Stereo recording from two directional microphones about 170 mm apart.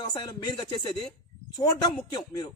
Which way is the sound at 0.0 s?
25° left (ahead or behind).